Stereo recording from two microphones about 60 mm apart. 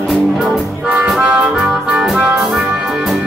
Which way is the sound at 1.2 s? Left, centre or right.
Right.